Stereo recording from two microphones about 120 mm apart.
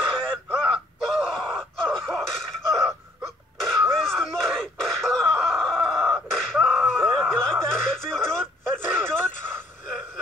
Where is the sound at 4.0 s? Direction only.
5° left (ahead or behind).